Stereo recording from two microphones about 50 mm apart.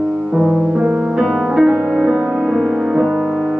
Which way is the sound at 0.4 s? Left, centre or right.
Centre.